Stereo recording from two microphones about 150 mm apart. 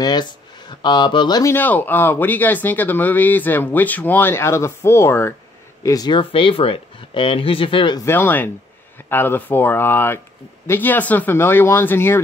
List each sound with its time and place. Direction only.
0.0 s speech: 30° left (ahead or behind)
1.5 s speech: 10° left (ahead or behind); by 8.0 s 35° left (ahead or behind)
8.0 s speech: 15° left (ahead or behind)